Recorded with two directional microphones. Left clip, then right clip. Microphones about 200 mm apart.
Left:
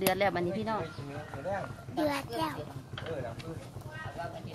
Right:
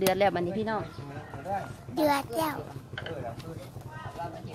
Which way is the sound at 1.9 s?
55° right (ahead or behind).